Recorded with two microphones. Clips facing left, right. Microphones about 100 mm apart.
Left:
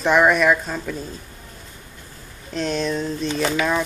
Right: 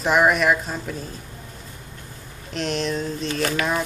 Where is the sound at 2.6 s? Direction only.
Centre (ahead or behind).